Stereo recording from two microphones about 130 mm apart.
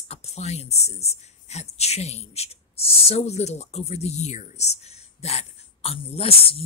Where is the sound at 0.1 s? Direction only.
55° left (ahead or behind).